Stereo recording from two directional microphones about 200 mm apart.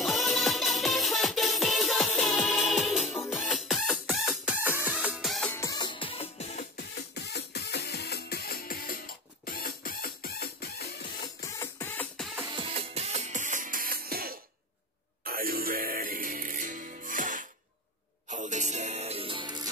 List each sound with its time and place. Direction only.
0.0 s music: centre (ahead or behind)
5.5 s music: 15° left (ahead or behind); by 6.6 s 30° left (ahead or behind)
6.8 s music: 55° left (ahead or behind)
11.1 s music: 15° left (ahead or behind)
12.4 s music: 25° right (ahead or behind)